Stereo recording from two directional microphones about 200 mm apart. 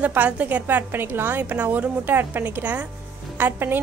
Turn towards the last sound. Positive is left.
turn(degrees=-10)  # may be behind; listen again after turning